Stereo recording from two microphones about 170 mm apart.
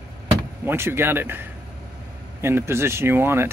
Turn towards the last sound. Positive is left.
turn(degrees=-15)  # may be behind; listen again after turning